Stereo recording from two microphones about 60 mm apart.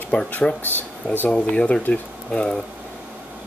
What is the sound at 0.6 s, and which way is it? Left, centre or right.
Speech, left.